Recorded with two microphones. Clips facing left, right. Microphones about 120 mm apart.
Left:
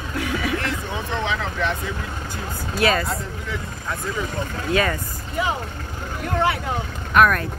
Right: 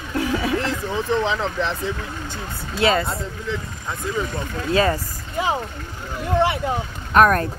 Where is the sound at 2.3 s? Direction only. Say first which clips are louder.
Left 2 dB; 25° right (ahead or behind).